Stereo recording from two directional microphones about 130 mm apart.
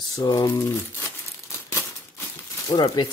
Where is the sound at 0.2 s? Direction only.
30° left (ahead or behind).